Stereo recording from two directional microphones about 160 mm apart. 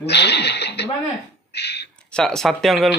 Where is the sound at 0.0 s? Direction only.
90° left.